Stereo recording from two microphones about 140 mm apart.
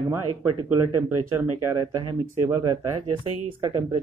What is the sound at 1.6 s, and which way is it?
Speech, 20° right (ahead or behind).